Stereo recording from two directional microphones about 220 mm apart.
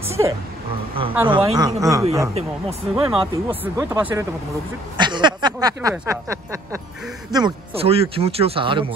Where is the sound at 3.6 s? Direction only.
10° right (ahead or behind).